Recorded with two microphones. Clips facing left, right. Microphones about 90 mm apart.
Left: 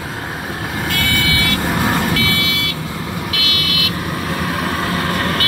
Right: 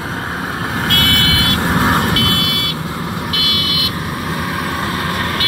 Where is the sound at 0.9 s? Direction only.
65° right (ahead or behind).